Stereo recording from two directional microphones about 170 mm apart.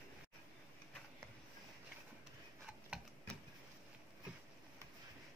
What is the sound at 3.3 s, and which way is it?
Vehicle, 5° left (ahead or behind).